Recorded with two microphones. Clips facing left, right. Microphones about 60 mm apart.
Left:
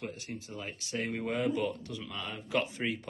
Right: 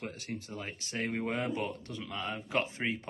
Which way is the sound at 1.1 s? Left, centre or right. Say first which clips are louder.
Left 3 dB; right.